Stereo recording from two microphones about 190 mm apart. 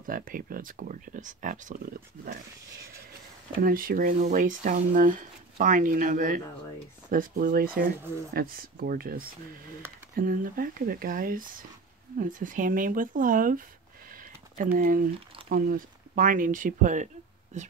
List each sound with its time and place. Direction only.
0.0 s speech: 45° right (ahead or behind)
3.6 s speech: 50° right (ahead or behind)
14.1 s a sound: 45° right (ahead or behind)
15.5 s speech: 45° right (ahead or behind)